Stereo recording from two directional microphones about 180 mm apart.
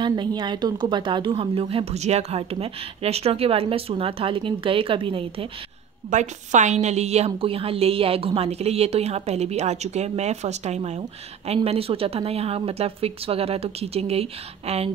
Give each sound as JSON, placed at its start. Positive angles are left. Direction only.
{"t": 0.0, "sound": "a woman's voice", "side_deg": -25}
{"t": 6.0, "sound": "a woman's voice", "side_deg": -40}